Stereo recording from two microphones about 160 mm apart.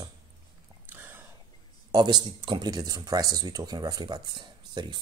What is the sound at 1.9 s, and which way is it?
Speech, 25° right (ahead or behind).